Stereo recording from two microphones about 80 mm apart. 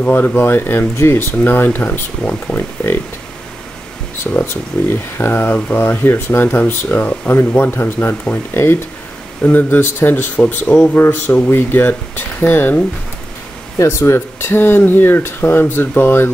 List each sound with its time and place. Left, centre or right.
0.0 s speech: centre
4.3 s speech: left
13.7 s speech: left